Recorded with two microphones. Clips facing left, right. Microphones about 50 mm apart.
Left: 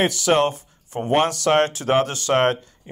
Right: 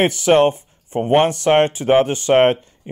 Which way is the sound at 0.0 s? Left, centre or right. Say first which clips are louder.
Right 5 dB; right.